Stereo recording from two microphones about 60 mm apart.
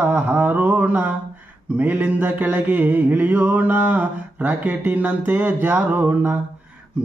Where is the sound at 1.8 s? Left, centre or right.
Right.